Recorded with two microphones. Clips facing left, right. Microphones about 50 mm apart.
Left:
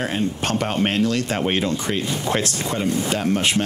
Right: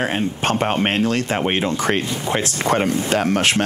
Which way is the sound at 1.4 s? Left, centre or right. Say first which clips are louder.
Right 1 dB; right.